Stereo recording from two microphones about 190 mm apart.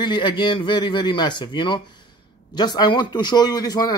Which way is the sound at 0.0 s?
25° left (ahead or behind).